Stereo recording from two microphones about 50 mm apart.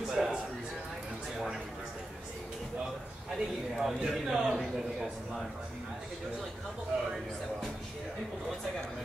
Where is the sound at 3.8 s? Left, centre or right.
Centre.